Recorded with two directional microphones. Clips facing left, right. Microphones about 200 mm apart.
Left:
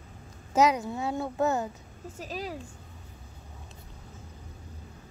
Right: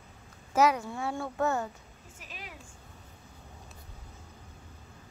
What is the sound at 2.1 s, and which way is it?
Speech, 35° left (ahead or behind).